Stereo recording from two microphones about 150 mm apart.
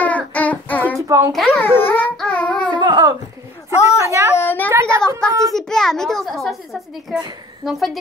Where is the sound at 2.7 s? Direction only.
30° right (ahead or behind).